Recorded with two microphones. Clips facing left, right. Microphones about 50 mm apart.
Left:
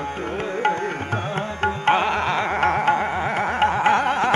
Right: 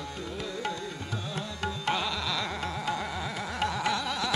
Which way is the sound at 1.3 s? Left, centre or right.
Left.